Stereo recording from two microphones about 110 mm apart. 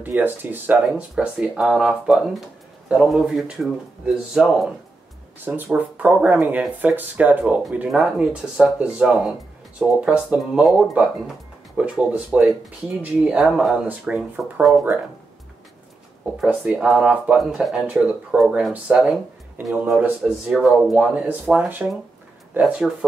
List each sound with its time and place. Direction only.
0.0 s speech: 15° right (ahead or behind)
1.1 s speech: 5° right (ahead or behind)
13.8 s speech: 15° right (ahead or behind)
14.6 s speech: 5° right (ahead or behind)
16.4 s speech: 15° right (ahead or behind)